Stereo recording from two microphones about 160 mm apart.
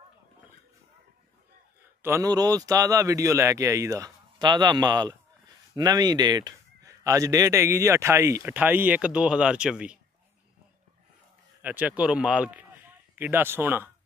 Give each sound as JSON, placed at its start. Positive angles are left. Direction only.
{"t": 2.0, "sound": "a man's voice", "side_deg": -15}
{"t": 11.6, "sound": "speech", "side_deg": -10}